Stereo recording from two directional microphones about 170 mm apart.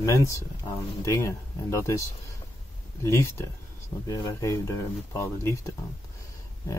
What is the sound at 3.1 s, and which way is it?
Speech, 15° left (ahead or behind).